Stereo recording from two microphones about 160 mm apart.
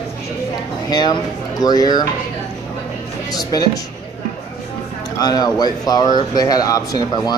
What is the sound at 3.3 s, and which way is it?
Speech, 25° left (ahead or behind).